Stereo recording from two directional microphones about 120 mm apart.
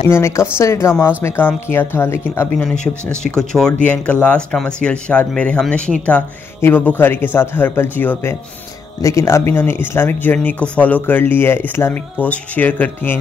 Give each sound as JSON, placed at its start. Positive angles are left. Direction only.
{"t": 0.1, "sound": "speech", "side_deg": 20}
{"t": 2.5, "sound": "speech", "side_deg": 5}